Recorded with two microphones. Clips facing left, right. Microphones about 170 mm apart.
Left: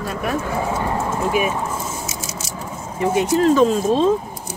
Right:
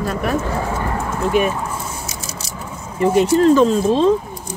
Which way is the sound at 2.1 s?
20° left (ahead or behind).